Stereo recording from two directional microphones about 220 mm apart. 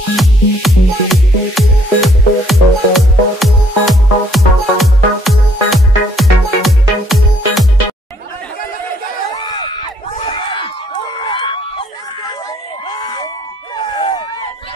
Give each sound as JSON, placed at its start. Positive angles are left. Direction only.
{"t": 0.1, "sound": "music", "side_deg": 0}
{"t": 9.3, "sound": "crowd", "side_deg": 20}
{"t": 12.8, "sound": "a sound", "side_deg": 20}